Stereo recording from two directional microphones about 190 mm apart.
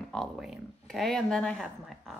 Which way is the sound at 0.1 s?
Centre (ahead or behind).